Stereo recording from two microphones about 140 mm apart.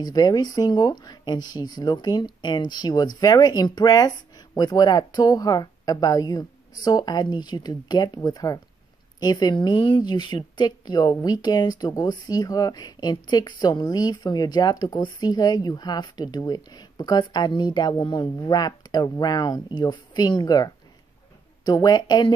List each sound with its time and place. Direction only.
0.0 s a woman's voice: 30° left (ahead or behind)